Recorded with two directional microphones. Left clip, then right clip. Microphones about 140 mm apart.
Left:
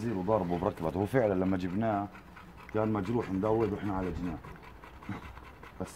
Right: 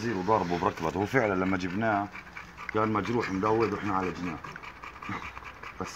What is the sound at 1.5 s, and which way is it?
Speech, 40° left (ahead or behind).